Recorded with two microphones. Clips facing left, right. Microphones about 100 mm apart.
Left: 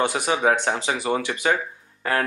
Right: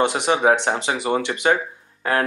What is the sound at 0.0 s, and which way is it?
A man's voice, 25° right (ahead or behind).